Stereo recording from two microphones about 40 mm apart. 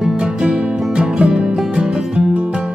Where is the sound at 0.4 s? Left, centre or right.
Centre.